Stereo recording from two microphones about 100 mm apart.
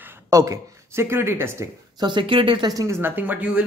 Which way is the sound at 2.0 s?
55° right (ahead or behind).